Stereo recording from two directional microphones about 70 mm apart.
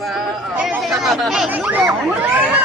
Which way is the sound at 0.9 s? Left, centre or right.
Centre.